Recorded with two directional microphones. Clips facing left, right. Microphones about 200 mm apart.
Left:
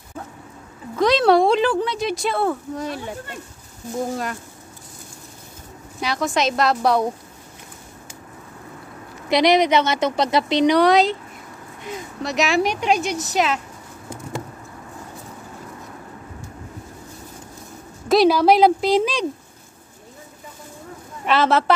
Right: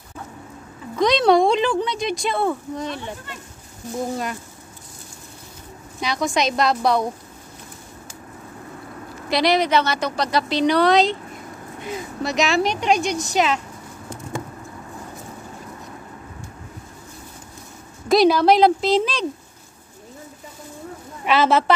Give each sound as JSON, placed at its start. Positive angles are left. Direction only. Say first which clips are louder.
{"t": 0.9, "sound": "speech", "louder": "even", "side_deg": 5}
{"t": 5.9, "sound": "speech", "louder": "even", "side_deg": 5}
{"t": 9.3, "sound": "speech", "louder": "left 2 dB", "side_deg": 20}
{"t": 12.2, "sound": "speech", "louder": "right 1 dB", "side_deg": 0}
{"t": 12.4, "sound": "speech", "louder": "left 1 dB", "side_deg": 10}
{"t": 18.0, "sound": "speech", "louder": "even", "side_deg": 5}
{"t": 21.3, "sound": "speech", "louder": "even", "side_deg": 0}